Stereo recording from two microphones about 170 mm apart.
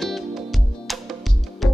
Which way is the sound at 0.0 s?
Centre (ahead or behind).